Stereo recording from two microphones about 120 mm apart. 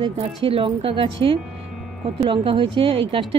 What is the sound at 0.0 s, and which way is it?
Speech, 50° right (ahead or behind).